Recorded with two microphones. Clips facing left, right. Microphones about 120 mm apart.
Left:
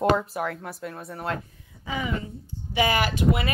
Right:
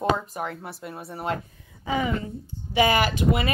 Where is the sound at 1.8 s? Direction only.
40° right (ahead or behind).